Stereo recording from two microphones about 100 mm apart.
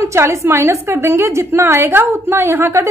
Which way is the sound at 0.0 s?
30° right (ahead or behind).